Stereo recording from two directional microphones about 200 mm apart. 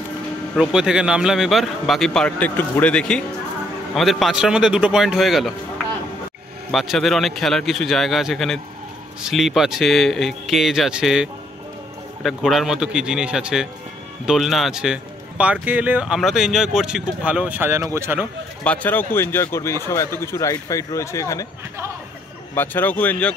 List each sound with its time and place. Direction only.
0.6 s a man's voice: 5° right (ahead or behind)
6.7 s a man's voice: centre (ahead or behind)
18.6 s a man's voice: 5° left (ahead or behind)
22.5 s a man's voice: 10° left (ahead or behind)